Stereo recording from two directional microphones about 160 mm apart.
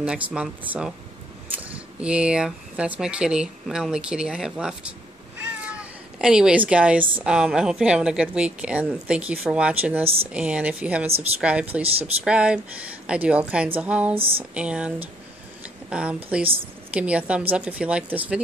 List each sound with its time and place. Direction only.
0.0 s speech: 5° right (ahead or behind)
5.4 s cat: 10° right (ahead or behind)
7.2 s a woman's voice: 5° right (ahead or behind)
11.8 s speech: 40° right (ahead or behind)
12.3 s a woman's voice: 5° right (ahead or behind)
14.1 s speech: 35° right (ahead or behind)
14.5 s a woman's voice: 5° right (ahead or behind)